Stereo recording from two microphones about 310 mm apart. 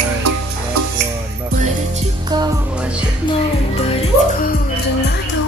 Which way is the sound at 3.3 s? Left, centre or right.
Centre.